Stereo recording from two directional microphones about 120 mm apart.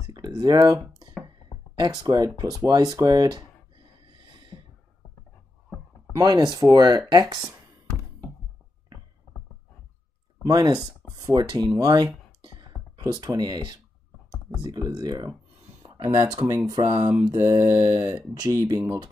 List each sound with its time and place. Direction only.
0.0 s a sound: 30° right (ahead or behind)
1.8 s mantra: 30° right (ahead or behind)
6.1 s mantra: 35° right (ahead or behind)
10.4 s mantra: 30° right (ahead or behind)
12.4 s computer keyboard: 35° right (ahead or behind)
14.6 s mantra: 35° right (ahead or behind)